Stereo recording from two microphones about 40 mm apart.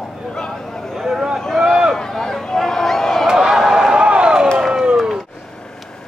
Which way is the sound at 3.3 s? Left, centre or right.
Centre.